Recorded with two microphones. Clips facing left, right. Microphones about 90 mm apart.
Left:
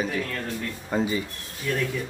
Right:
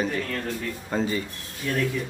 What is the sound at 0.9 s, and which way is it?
Speech, 10° left (ahead or behind).